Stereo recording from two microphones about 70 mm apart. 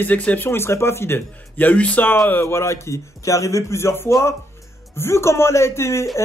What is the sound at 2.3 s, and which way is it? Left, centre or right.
A man's voice, left.